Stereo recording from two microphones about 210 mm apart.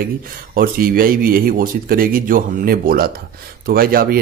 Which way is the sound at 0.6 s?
45° right (ahead or behind).